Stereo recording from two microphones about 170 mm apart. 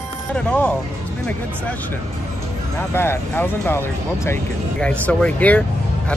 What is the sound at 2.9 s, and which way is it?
Speech, 15° left (ahead or behind).